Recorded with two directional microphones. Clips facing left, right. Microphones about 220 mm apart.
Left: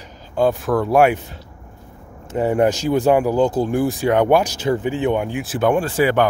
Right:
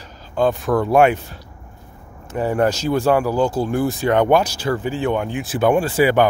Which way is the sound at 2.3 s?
20° left (ahead or behind).